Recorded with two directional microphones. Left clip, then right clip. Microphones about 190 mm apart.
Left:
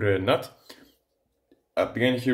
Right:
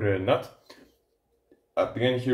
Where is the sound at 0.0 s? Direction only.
30° left (ahead or behind).